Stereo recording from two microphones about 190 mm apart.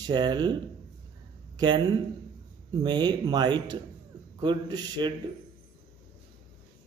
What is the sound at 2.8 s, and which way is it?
A man's voice, 20° right (ahead or behind).